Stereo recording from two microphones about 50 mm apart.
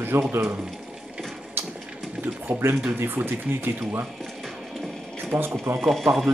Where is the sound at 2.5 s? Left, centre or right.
Right.